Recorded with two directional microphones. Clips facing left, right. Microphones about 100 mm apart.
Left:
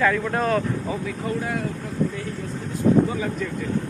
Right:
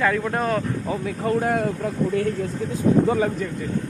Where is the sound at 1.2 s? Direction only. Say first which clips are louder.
Right 7 dB; 50° right (ahead or behind).